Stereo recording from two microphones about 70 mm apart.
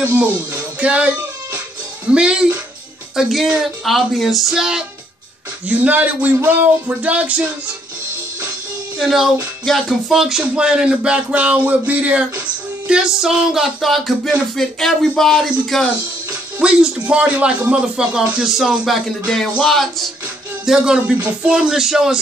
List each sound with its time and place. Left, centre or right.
0.0 s music: right
0.7 s speech: centre
2.1 s speech: centre
3.2 s speech: centre
5.7 s music: right
8.9 s speech: centre
16.6 s speech: centre
20.6 s speech: centre